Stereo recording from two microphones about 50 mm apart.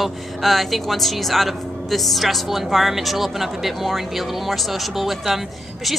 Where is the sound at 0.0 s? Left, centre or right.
Centre.